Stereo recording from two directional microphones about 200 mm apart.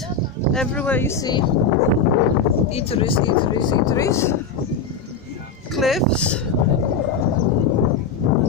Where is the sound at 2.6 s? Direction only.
30° left (ahead or behind); by 4.3 s 15° left (ahead or behind).